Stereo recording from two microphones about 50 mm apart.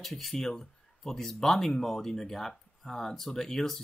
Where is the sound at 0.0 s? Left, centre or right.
Centre.